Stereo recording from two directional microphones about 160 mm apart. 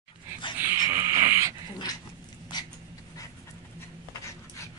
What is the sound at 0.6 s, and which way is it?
Dog, 15° right (ahead or behind).